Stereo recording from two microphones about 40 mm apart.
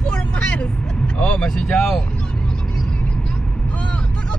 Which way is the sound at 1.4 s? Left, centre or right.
Centre.